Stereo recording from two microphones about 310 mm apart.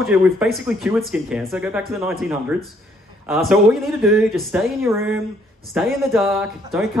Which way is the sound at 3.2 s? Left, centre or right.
Centre.